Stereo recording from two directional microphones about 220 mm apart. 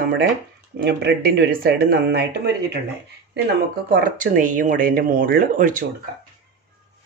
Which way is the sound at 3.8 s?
40° right (ahead or behind).